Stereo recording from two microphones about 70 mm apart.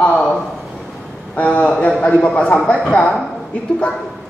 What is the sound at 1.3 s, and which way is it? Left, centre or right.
A woman's voice, centre.